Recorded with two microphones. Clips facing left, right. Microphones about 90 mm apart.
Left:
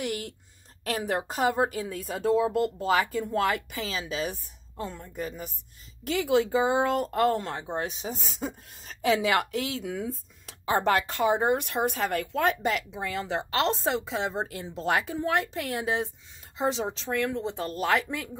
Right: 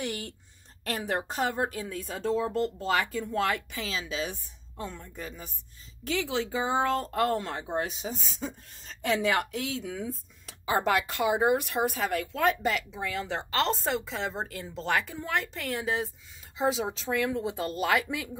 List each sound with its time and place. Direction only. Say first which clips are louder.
0.0 s a woman's voice: left 2 dB; centre (ahead or behind)
14.4 s speech: left 2 dB; 35° left (ahead or behind)
15.8 s speech: left 1 dB; 5° left (ahead or behind)